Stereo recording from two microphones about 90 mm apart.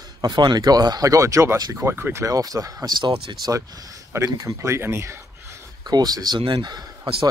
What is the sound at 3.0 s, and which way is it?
Speech, 65° right (ahead or behind).